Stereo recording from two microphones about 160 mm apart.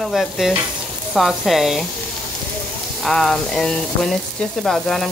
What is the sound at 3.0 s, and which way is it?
Speech, centre (ahead or behind).